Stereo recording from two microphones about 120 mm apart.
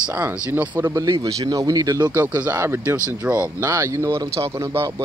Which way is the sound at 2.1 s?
15° right (ahead or behind).